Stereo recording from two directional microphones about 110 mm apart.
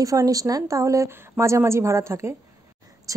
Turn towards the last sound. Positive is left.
turn(degrees=-30)  # may be behind; listen again after turning